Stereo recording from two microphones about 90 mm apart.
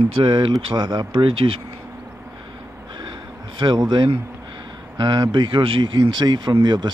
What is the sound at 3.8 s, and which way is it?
Speech, 60° right (ahead or behind).